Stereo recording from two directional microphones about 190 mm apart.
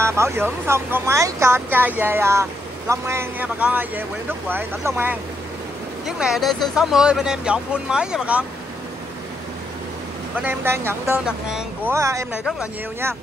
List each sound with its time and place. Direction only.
0.0 s speech: 15° right (ahead or behind)
10.3 s speech: 10° right (ahead or behind)
11.9 s speech: 15° right (ahead or behind)